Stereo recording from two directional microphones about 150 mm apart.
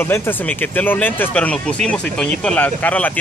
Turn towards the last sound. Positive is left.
turn(degrees=10)  # may be behind; listen again after turning